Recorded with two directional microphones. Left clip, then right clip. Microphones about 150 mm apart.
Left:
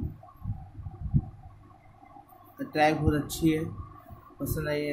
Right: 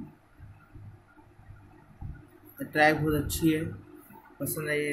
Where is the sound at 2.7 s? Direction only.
5° left (ahead or behind).